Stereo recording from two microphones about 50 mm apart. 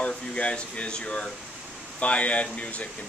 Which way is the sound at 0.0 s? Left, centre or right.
Left.